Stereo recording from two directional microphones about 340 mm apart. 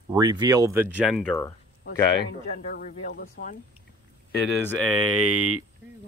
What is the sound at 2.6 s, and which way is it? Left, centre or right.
Speech, left.